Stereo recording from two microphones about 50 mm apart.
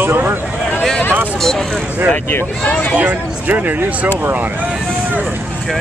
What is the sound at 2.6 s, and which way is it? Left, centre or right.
Speech, left.